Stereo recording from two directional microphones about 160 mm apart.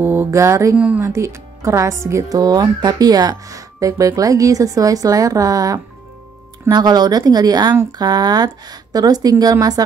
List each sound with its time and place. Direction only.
0.0 s music: 15° right (ahead or behind)
1.0 s speech: 15° right (ahead or behind)